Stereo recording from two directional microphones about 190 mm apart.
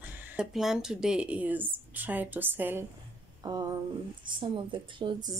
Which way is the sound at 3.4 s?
20° right (ahead or behind).